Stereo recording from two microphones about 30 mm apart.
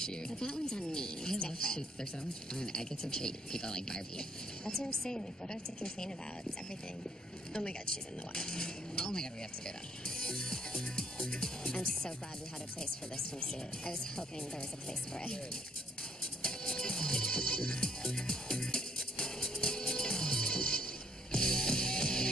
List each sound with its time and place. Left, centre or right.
0.0 s speech: left
8.4 s speech: left
10.0 s music: left
10.8 s speech: left
13.8 s speech: left
16.4 s music: left